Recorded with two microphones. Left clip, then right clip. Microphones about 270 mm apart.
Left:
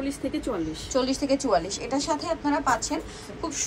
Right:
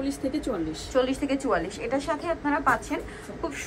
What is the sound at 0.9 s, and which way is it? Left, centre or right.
A woman's voice, centre.